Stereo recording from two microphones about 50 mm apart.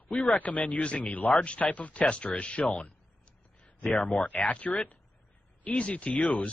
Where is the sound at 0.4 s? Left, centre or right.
Left.